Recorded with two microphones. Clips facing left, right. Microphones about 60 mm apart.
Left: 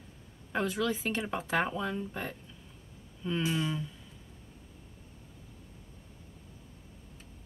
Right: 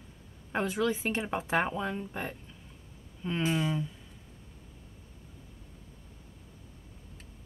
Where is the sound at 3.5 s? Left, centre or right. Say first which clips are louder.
Right 5 dB; right.